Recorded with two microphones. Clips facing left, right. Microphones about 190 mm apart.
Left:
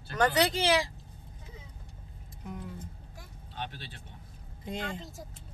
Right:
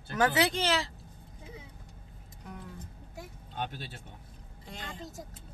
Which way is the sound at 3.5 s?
45° right (ahead or behind).